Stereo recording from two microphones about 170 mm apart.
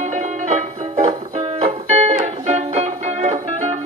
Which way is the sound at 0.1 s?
45° right (ahead or behind).